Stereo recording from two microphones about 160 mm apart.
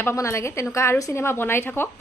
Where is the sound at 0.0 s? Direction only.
15° left (ahead or behind).